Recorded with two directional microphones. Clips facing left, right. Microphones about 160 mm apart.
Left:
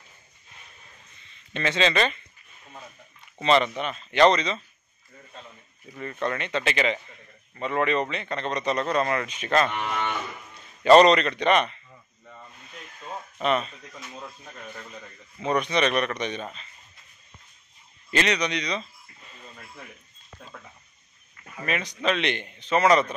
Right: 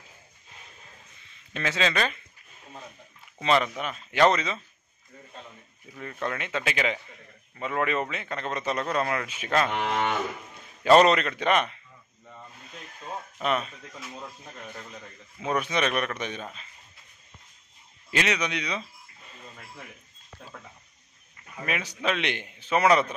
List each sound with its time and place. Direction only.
1.2 s speech: 5° right (ahead or behind)
3.3 s speech: 5° right (ahead or behind)
5.9 s a man's voice: centre (ahead or behind)
9.7 s cattle: 90° right
10.8 s speech: 5° right (ahead or behind)
13.4 s a man's voice: 5° right (ahead or behind)
18.1 s a man's voice: 10° right (ahead or behind)
20.3 s a man's voice: 5° right (ahead or behind)